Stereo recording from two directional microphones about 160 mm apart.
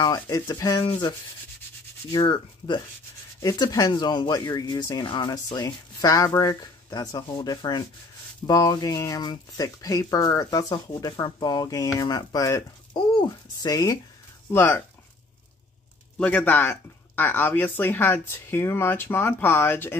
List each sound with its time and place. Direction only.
0.0 s speech: 25° left (ahead or behind)
2.1 s speech: 30° left (ahead or behind)
14.5 s speech: 15° left (ahead or behind)
16.2 s speech: 10° left (ahead or behind)